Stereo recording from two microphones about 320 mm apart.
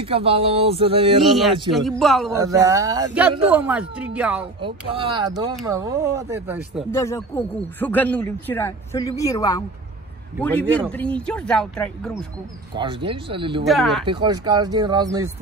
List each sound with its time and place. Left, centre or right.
0.0 s speech: centre
1.7 s speech: centre
2.3 s speech: centre
4.6 s speech: centre
6.9 s speech: centre
12.7 s speech: centre
13.7 s speech: centre
14.0 s speech: centre